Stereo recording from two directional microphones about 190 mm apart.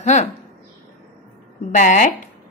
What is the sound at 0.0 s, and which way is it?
Speech, 40° left (ahead or behind).